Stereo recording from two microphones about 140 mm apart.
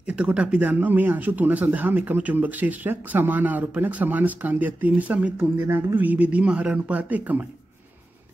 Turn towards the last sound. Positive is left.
turn(degrees=-10)  # may be behind; listen again after turning